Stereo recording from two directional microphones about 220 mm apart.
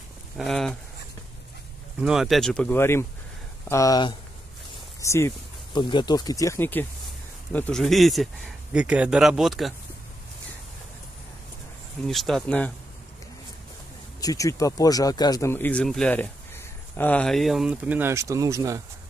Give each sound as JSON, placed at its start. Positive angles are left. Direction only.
{"t": 0.4, "sound": "speech", "side_deg": 0}
{"t": 2.0, "sound": "speech", "side_deg": -5}
{"t": 12.1, "sound": "speech", "side_deg": 0}
{"t": 14.2, "sound": "speech", "side_deg": 15}